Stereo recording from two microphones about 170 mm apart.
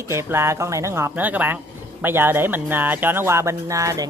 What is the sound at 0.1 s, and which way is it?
Speech, 15° right (ahead or behind).